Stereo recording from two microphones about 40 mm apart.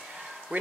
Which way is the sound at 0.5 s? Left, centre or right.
Right.